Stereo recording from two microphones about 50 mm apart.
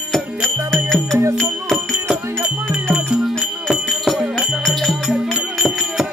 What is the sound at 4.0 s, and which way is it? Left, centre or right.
Music, centre.